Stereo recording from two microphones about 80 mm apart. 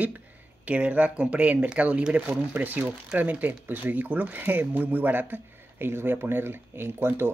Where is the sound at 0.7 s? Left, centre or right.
Centre.